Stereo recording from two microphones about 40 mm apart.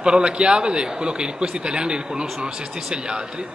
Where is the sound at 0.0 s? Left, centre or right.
Right.